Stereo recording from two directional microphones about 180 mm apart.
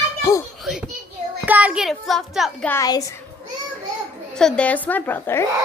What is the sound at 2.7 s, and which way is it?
Speech, 20° left (ahead or behind).